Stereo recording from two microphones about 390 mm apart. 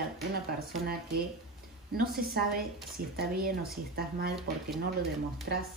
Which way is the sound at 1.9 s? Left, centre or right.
Right.